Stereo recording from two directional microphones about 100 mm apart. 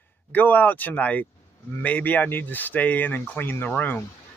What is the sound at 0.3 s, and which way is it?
Speech, 15° left (ahead or behind).